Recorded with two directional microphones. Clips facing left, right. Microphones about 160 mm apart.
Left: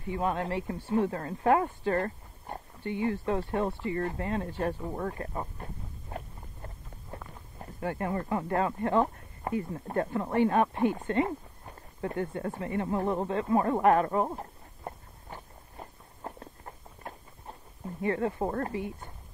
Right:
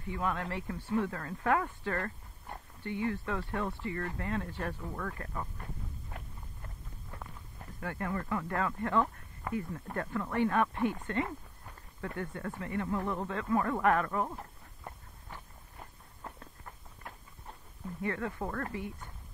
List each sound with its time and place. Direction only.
0.1 s speech: 25° left (ahead or behind)
14.9 s a sound: 35° left (ahead or behind)
16.2 s walk: 35° left (ahead or behind)
17.8 s speech: 30° left (ahead or behind)